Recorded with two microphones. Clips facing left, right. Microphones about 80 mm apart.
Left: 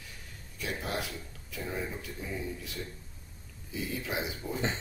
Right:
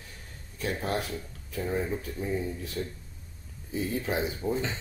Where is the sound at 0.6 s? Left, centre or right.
Right.